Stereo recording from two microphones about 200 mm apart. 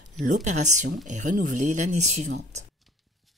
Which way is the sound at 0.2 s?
40° right (ahead or behind).